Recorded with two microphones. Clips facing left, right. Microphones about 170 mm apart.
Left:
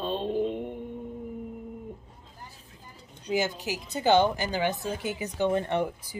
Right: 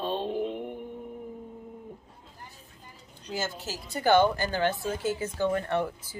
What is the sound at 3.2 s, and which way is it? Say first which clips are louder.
A woman's voice: left 6 dB; 15° left (ahead or behind).